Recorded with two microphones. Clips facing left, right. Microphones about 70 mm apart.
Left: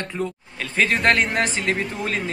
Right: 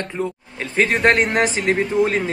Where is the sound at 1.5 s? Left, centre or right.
Centre.